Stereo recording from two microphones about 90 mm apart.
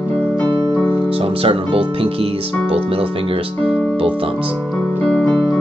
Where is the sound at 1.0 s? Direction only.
90° right.